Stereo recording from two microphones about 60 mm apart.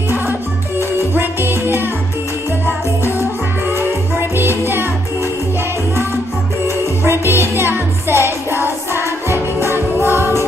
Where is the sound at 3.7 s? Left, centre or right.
Right.